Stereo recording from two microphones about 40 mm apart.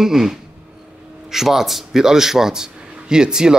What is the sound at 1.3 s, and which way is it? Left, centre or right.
A man's voice, centre.